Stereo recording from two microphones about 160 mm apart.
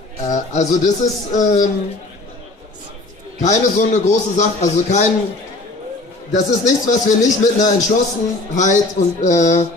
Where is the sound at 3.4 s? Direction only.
50° left (ahead or behind).